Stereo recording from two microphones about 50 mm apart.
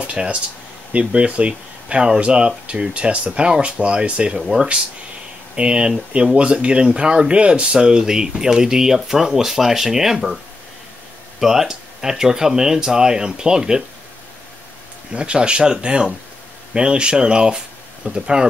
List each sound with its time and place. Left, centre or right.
0.0 s a sound: right
0.9 s speech: right
4.4 s speech: centre
5.6 s speech: right
15.1 s speech: right